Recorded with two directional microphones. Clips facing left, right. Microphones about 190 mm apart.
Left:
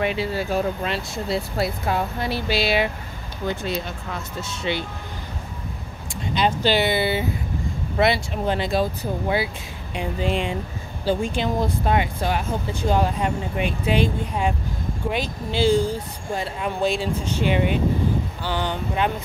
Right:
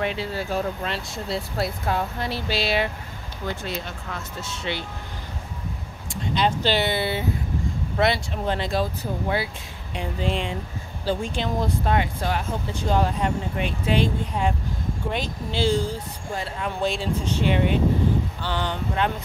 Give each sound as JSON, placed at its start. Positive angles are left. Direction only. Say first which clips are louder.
{"t": 0.0, "sound": "speech", "louder": "left 3 dB", "side_deg": 10}
{"t": 6.2, "sound": "speech", "louder": "left 2 dB", "side_deg": 10}
{"t": 9.9, "sound": "speech", "louder": "left 3 dB", "side_deg": 10}